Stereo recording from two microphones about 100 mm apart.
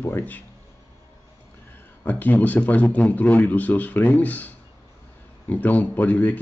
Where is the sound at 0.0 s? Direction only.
20° left (ahead or behind).